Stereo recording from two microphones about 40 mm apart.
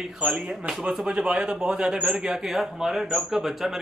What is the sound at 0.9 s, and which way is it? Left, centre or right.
A man's voice, centre.